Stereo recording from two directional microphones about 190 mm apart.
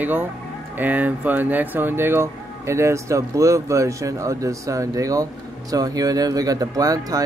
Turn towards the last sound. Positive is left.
turn(degrees=-20)  # may be behind; listen again after turning